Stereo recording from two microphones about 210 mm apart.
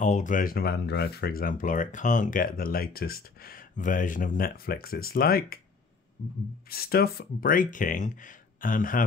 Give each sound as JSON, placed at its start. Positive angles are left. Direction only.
{"t": 0.0, "sound": "speech", "side_deg": 35}
{"t": 6.7, "sound": "speech", "side_deg": 45}